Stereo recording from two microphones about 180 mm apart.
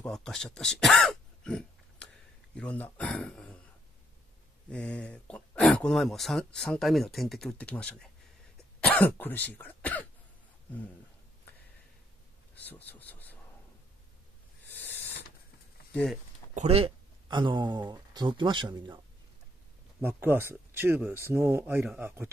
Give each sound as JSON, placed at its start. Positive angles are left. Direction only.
{"t": 0.0, "sound": "speech", "side_deg": 5}
{"t": 0.6, "sound": "throat clearing", "side_deg": 0}
{"t": 2.5, "sound": "speech", "side_deg": 5}
{"t": 4.6, "sound": "speech", "side_deg": 5}
{"t": 12.5, "sound": "a sound", "side_deg": 10}
{"t": 14.8, "sound": "a sound", "side_deg": 10}
{"t": 15.9, "sound": "speech", "side_deg": 5}
{"t": 16.5, "sound": "speech", "side_deg": -35}
{"t": 20.0, "sound": "speech", "side_deg": -10}